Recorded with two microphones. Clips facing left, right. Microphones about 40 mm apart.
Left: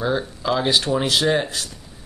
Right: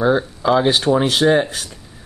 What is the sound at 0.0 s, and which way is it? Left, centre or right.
Speech, centre.